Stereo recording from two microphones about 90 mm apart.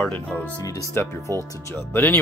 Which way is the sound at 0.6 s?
40° left (ahead or behind).